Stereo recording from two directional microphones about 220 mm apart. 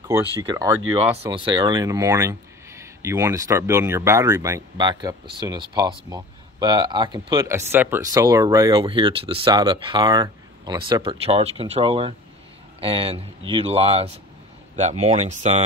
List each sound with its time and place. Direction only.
0.4 s speech: 15° right (ahead or behind); by 15.6 s 30° right (ahead or behind)